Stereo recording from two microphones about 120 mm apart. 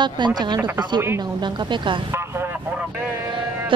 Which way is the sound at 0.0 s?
35° right (ahead or behind).